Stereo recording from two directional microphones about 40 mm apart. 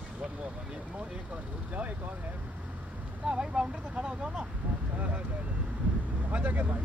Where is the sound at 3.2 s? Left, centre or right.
Right.